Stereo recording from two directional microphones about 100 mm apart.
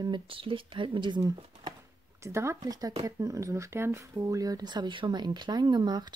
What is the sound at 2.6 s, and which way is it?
Speech, 40° right (ahead or behind).